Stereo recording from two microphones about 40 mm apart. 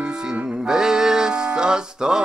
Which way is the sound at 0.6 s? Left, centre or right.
Centre.